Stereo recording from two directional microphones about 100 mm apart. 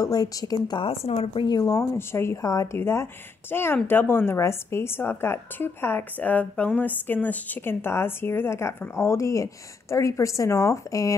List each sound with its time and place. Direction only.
0.0 s a woman's voice: 40° left (ahead or behind)
0.7 s speech: 80° left
1.4 s a woman's voice: 40° left (ahead or behind)
2.0 s speech: 25° left (ahead or behind)